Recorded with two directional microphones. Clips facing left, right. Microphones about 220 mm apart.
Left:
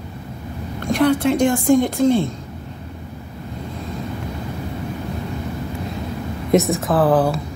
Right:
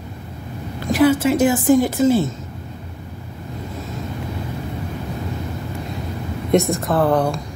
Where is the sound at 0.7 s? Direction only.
5° right (ahead or behind).